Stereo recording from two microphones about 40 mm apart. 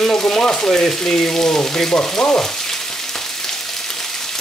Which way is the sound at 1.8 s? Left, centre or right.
Left.